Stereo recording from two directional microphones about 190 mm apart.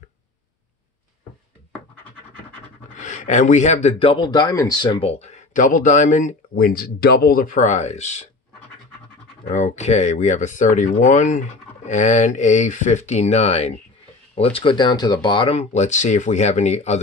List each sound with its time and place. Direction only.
3.0 s a man's voice: 40° left (ahead or behind)
9.4 s a man's voice: 40° left (ahead or behind)